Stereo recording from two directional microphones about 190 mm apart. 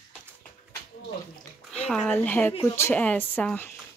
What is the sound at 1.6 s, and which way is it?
Speech, 5° left (ahead or behind).